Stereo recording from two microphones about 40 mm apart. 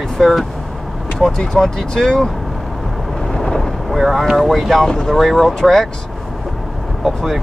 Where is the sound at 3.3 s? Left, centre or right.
Centre.